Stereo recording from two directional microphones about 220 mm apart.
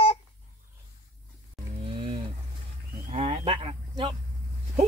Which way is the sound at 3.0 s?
25° right (ahead or behind).